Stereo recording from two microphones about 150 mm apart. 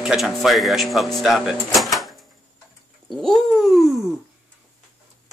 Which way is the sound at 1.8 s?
Centre (ahead or behind).